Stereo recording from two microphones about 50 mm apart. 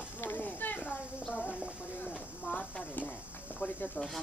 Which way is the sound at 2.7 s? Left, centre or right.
Left.